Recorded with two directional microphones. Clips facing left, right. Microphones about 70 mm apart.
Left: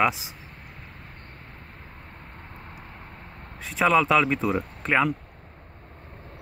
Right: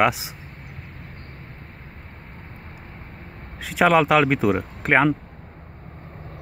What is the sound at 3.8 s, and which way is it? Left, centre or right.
Speech, right.